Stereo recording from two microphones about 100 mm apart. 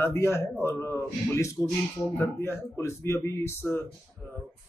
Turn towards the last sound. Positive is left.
turn(degrees=25)  # may be behind; listen again after turning